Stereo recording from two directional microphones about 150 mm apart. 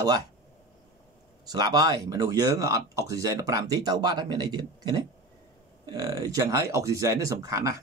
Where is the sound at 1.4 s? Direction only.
25° right (ahead or behind).